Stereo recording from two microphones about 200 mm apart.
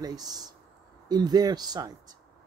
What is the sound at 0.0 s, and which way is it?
Speech, 20° right (ahead or behind).